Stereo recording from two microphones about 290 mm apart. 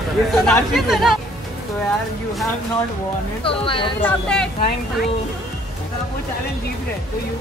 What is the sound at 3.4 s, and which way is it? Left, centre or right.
Speech, centre.